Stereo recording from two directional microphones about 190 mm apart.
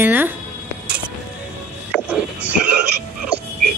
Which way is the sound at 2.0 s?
5° right (ahead or behind).